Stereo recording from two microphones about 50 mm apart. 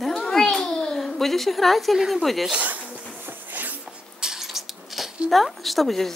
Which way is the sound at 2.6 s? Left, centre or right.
Right.